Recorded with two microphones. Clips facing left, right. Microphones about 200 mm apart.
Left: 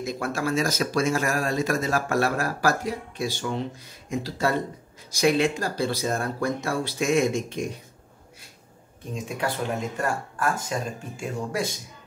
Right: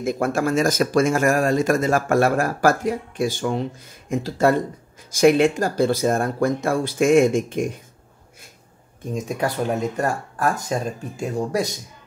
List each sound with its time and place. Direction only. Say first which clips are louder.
0.0 s speech: right 6 dB; 50° right (ahead or behind)
9.1 s speech: right 5 dB; 40° right (ahead or behind)